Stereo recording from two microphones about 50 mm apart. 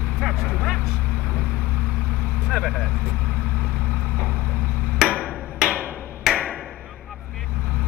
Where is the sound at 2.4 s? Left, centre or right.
Centre.